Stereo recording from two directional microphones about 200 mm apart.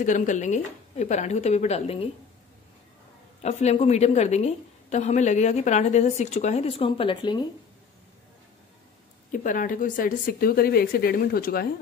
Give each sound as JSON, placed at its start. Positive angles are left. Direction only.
{"t": 0.0, "sound": "a woman's voice", "side_deg": 40}
{"t": 3.4, "sound": "a woman's voice", "side_deg": 35}
{"t": 9.3, "sound": "a woman's voice", "side_deg": 40}